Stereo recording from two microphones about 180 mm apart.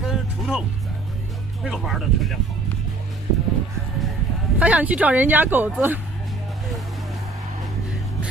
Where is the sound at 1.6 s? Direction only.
Centre (ahead or behind).